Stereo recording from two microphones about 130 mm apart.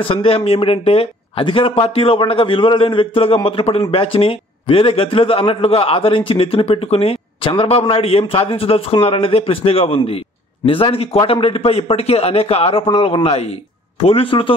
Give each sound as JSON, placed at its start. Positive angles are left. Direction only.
{"t": 0.1, "sound": "a man's voice", "side_deg": 45}